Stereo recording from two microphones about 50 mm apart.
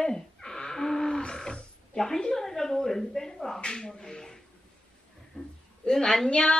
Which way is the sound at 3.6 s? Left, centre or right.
Centre.